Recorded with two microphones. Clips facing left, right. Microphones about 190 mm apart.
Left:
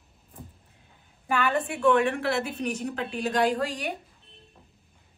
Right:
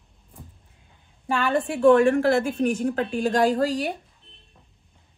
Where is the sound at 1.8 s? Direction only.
45° right (ahead or behind).